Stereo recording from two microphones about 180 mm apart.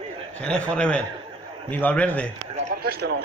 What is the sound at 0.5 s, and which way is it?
Speech, 5° left (ahead or behind).